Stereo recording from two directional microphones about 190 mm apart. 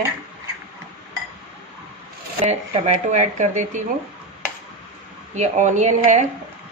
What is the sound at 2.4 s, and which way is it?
Speech, 35° right (ahead or behind).